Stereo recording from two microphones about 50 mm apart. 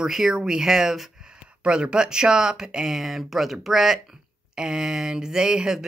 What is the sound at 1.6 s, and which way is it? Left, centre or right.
Speech, centre.